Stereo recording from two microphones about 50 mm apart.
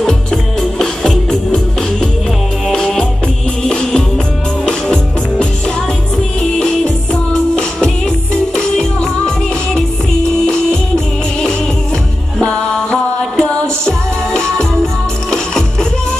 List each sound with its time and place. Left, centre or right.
0.0 s music: centre
8.5 s music: centre
12.4 s music: centre